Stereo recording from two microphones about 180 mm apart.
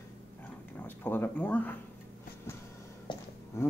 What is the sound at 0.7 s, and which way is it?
Speech, 10° left (ahead or behind).